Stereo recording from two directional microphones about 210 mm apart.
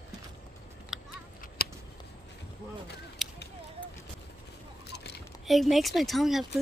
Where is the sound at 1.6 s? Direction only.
45° left (ahead or behind).